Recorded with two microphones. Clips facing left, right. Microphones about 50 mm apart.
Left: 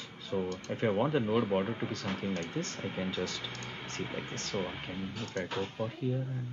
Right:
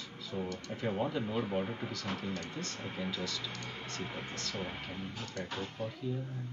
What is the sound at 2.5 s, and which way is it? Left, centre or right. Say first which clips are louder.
Speech: left 4 dB; left.